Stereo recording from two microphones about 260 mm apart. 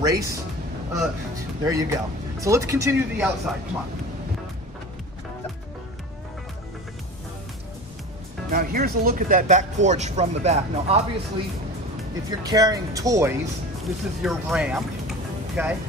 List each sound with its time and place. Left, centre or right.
0.0 s speech: centre
1.6 s speech: centre
8.5 s speech: right
12.3 s speech: centre